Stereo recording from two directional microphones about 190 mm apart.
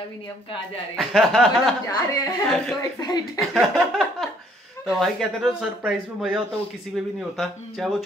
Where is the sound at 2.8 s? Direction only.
20° left (ahead or behind).